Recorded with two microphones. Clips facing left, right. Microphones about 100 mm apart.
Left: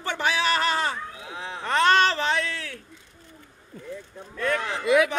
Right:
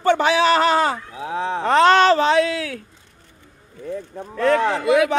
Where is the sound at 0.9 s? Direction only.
90° right.